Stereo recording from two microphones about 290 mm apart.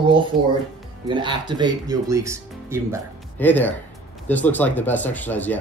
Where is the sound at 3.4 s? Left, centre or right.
Centre.